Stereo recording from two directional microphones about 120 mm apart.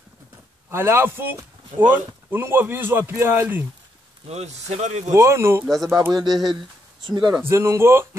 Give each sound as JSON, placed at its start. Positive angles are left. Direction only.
{"t": 0.7, "sound": "a man's voice", "side_deg": -20}
{"t": 4.3, "sound": "speech", "side_deg": -65}
{"t": 5.1, "sound": "a man's voice", "side_deg": -25}
{"t": 6.1, "sound": "speech", "side_deg": -35}
{"t": 7.4, "sound": "a man's voice", "side_deg": -20}